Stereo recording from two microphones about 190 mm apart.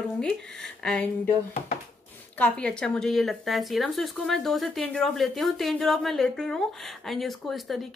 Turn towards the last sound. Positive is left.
turn(degrees=0)  # may be behind; listen again after turning